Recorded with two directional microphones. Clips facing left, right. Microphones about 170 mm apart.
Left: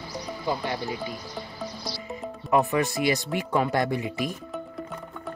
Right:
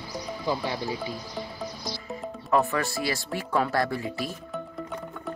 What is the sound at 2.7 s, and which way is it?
Speech, 20° left (ahead or behind).